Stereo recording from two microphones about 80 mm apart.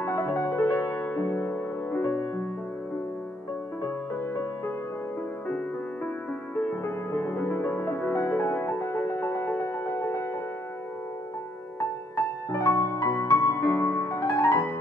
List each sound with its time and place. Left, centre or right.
0.0 s music: left
0.6 s music: left
3.8 s music: left
6.5 s music: centre
12.4 s music: left
14.0 s music: left